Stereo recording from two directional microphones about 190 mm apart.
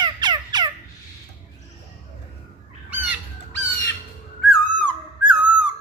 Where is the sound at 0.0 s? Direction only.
20° right (ahead or behind).